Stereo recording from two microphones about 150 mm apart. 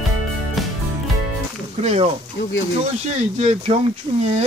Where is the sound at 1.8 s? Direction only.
45° right (ahead or behind).